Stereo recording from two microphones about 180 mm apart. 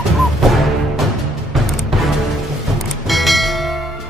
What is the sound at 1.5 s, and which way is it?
Music, centre (ahead or behind).